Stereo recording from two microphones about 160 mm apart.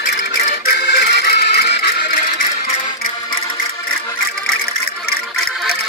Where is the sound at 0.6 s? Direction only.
80° left.